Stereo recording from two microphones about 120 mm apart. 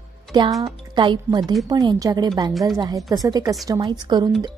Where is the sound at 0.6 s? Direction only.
40° right (ahead or behind).